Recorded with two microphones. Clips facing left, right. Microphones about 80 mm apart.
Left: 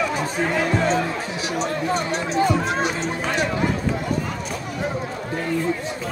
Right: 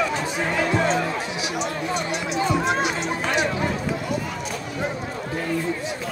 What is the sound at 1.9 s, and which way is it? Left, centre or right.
Run, left.